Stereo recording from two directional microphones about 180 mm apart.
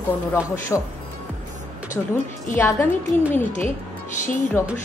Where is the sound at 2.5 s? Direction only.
10° left (ahead or behind).